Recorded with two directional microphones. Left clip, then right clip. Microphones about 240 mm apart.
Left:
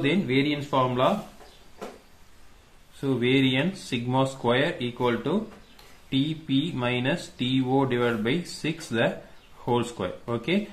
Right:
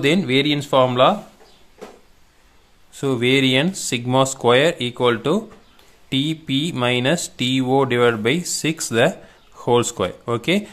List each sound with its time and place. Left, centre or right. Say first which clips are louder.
0.0 s speech: right 7 dB; right
3.0 s speech: right 6 dB; right